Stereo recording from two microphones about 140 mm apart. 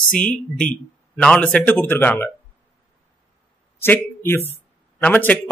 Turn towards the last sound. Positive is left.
turn(degrees=10)  # may be behind; listen again after turning